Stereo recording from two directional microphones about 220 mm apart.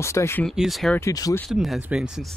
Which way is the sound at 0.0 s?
10° left (ahead or behind).